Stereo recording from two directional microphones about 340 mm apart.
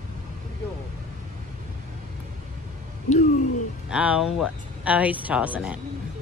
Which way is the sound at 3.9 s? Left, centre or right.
Centre.